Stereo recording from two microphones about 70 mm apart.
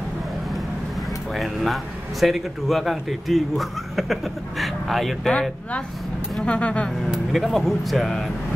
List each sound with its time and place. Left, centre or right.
1.3 s speech: centre
6.4 s speech: centre
7.1 s speech: centre